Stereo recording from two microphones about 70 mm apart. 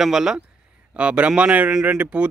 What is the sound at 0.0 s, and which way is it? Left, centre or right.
Speech, centre.